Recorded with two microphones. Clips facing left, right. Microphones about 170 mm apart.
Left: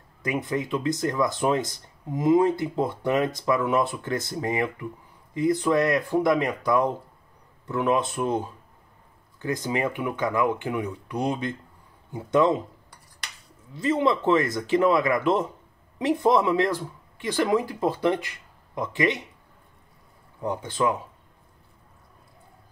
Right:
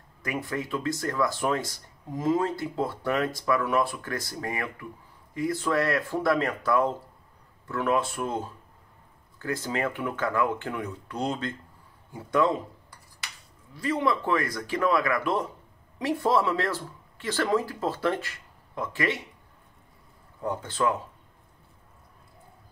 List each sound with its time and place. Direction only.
0.2 s speech: 20° left (ahead or behind)
13.7 s speech: 25° left (ahead or behind)
20.4 s speech: 15° left (ahead or behind)